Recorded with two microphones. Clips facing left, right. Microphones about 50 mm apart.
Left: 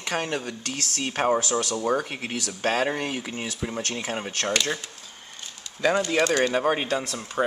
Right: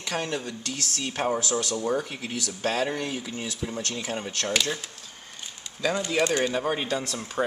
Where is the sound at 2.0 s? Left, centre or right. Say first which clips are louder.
Left 2 dB; left.